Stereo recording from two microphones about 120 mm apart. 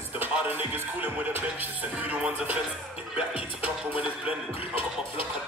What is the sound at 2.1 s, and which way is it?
Music, 10° right (ahead or behind).